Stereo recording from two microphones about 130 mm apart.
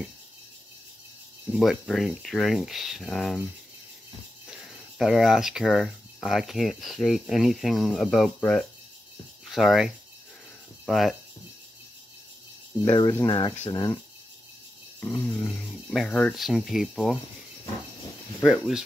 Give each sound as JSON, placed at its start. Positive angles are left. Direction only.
{"t": 1.5, "sound": "speech", "side_deg": 0}
{"t": 12.8, "sound": "speech", "side_deg": 35}
{"t": 15.0, "sound": "grunt", "side_deg": 20}
{"t": 15.4, "sound": "speech", "side_deg": 5}
{"t": 18.4, "sound": "speech", "side_deg": -5}